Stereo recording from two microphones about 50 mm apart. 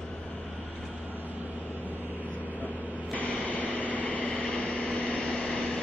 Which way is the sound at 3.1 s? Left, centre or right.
Left.